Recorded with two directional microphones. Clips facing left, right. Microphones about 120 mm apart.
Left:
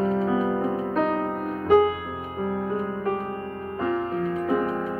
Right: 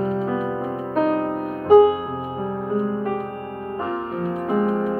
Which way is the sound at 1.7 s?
20° right (ahead or behind).